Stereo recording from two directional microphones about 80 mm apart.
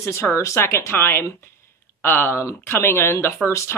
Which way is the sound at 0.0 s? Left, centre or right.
Left.